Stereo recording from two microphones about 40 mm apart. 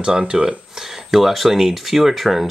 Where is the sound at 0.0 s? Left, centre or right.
Centre.